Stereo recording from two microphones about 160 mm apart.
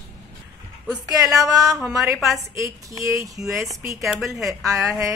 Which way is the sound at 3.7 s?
20° right (ahead or behind).